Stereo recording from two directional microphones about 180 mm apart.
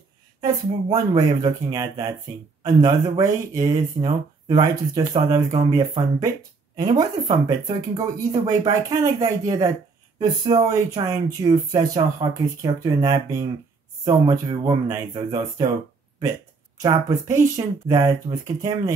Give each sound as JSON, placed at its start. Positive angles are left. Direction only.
{"t": 0.4, "sound": "speech", "side_deg": -20}
{"t": 16.8, "sound": "speech", "side_deg": -20}